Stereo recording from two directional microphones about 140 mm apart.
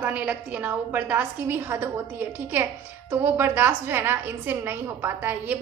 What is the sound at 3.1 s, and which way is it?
Speech, 15° right (ahead or behind).